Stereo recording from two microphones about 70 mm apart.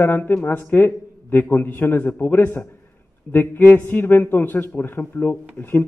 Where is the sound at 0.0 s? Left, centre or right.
Left.